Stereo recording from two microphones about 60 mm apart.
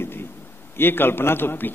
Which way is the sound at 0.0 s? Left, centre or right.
Left.